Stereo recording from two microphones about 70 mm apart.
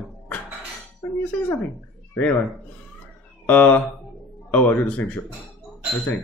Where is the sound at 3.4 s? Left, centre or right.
Left.